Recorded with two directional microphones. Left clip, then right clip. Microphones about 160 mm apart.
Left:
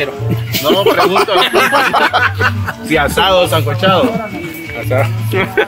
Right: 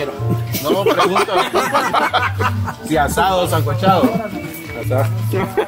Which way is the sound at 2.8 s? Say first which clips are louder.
Left 4 dB; 10° right (ahead or behind).